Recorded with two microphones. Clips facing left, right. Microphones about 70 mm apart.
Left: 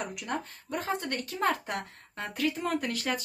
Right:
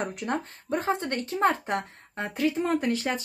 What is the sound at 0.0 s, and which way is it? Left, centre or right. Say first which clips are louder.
Speech: right 5 dB; right.